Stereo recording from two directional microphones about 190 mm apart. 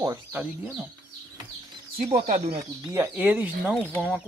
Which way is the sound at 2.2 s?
45° right (ahead or behind).